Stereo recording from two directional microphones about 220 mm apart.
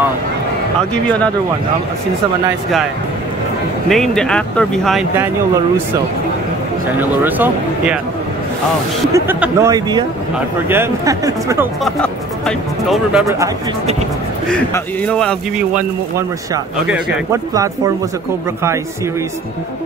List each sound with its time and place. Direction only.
3.9 s speech: centre (ahead or behind)
7.2 s speech: 10° right (ahead or behind)
9.1 s speech: 10° right (ahead or behind)
11.8 s speech: centre (ahead or behind)
14.5 s speech: 5° left (ahead or behind)
16.8 s speech: 5° right (ahead or behind)